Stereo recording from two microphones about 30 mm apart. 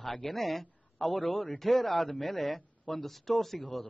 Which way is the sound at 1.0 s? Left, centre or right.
Centre.